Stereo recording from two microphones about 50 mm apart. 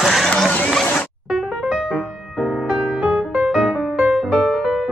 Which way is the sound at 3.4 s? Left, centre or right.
Centre.